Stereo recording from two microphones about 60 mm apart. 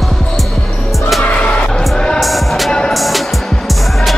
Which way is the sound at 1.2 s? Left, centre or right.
Left.